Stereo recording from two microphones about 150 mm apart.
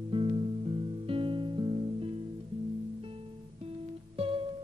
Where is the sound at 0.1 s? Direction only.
40° right (ahead or behind).